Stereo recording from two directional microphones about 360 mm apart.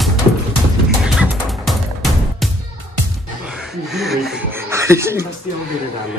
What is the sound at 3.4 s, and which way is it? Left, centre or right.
Speech, centre.